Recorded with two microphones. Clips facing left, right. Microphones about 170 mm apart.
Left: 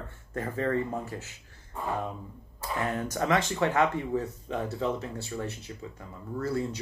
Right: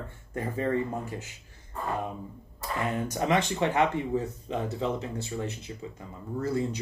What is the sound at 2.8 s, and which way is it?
Speech, 20° right (ahead or behind).